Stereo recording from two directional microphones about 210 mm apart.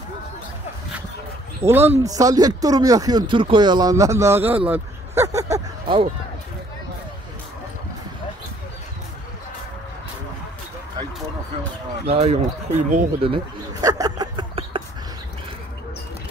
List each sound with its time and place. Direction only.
1.6 s speech: 10° right (ahead or behind)
5.4 s a sound: 20° right (ahead or behind)
12.1 s speech: 30° right (ahead or behind)